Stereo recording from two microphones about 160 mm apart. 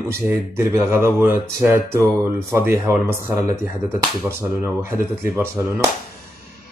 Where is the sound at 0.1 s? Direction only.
15° right (ahead or behind).